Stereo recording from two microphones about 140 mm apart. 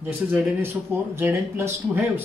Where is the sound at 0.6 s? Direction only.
15° right (ahead or behind).